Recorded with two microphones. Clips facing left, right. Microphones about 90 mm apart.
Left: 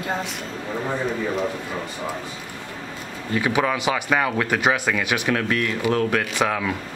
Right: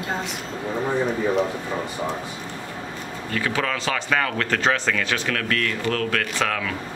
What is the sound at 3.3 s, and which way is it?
A man's voice, 15° left (ahead or behind).